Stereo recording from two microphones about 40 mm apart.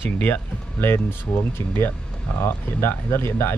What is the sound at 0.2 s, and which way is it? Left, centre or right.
Speech, left.